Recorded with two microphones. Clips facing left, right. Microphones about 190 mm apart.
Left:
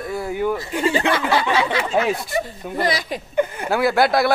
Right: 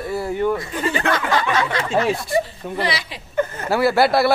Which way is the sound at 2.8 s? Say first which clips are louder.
Left 3 dB; 45° left (ahead or behind).